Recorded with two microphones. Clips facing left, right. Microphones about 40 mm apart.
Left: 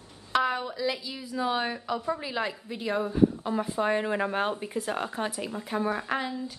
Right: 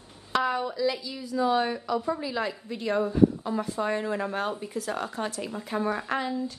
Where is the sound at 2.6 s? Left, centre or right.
Centre.